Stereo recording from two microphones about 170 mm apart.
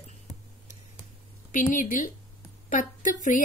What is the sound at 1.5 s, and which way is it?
A woman's voice, 50° left (ahead or behind).